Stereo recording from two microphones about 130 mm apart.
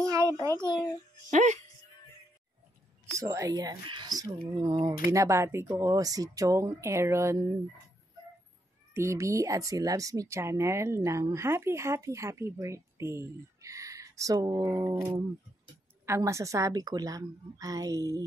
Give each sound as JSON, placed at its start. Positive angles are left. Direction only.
{"t": 0.0, "sound": "a sound", "side_deg": -25}
{"t": 0.7, "sound": "a child's voice", "side_deg": 35}
{"t": 1.3, "sound": "speech", "side_deg": -65}
{"t": 3.1, "sound": "speech", "side_deg": -25}
{"t": 8.9, "sound": "speech", "side_deg": -20}
{"t": 15.0, "sound": "a sound", "side_deg": -15}
{"t": 16.1, "sound": "speech", "side_deg": -25}